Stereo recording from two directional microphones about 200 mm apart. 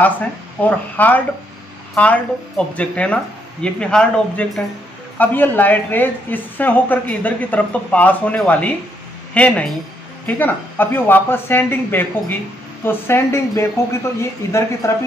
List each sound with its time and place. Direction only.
0.0 s a woman's voice: 10° left (ahead or behind)